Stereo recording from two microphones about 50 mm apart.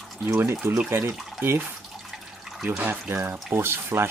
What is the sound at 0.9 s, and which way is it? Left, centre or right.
Speech, right.